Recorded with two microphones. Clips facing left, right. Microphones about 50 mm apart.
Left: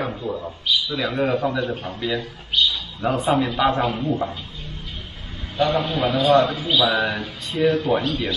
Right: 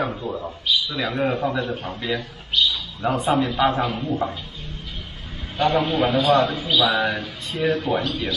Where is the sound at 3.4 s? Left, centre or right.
Centre.